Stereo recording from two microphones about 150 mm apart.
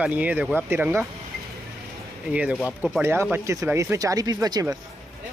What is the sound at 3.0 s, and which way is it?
Speech, 15° right (ahead or behind).